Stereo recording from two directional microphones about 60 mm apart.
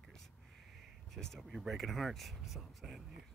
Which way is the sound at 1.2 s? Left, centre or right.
Centre.